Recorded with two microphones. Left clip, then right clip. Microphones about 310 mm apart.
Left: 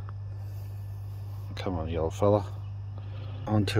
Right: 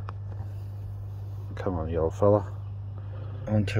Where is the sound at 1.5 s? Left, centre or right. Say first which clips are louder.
Right 3 dB; centre.